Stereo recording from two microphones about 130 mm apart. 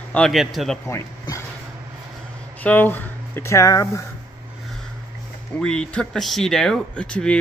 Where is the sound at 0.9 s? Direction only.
20° left (ahead or behind).